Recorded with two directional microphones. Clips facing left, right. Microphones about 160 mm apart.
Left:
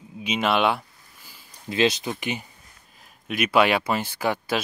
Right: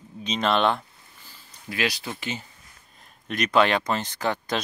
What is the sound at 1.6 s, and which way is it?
Speech, 25° left (ahead or behind).